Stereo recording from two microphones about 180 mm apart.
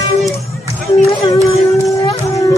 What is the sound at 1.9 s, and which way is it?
Wind instrument, 20° left (ahead or behind).